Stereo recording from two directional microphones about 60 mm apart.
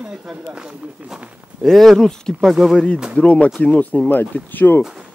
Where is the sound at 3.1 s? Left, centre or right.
Left.